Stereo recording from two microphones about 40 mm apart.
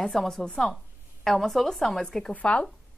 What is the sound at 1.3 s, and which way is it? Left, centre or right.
Speech, centre.